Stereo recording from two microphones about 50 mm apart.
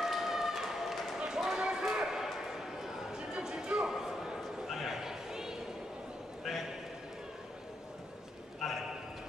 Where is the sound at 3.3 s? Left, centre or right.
Right.